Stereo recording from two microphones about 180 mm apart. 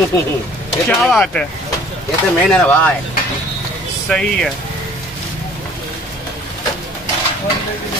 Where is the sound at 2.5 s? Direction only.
5° left (ahead or behind).